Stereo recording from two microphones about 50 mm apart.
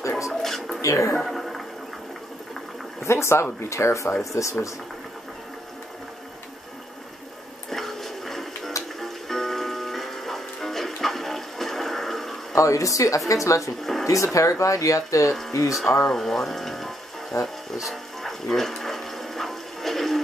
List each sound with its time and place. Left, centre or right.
0.3 s music: centre
0.8 s speech: left
1.2 s a sound: centre
3.0 s speech: left
3.6 s speech: left
7.7 s music: centre
12.5 s speech: left
16.1 s speech: centre
17.3 s speech: left
17.7 s a sound: centre